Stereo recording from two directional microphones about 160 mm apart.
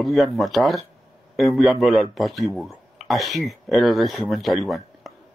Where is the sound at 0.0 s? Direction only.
Centre (ahead or behind).